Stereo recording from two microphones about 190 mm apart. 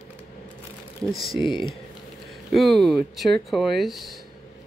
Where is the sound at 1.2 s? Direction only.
25° left (ahead or behind).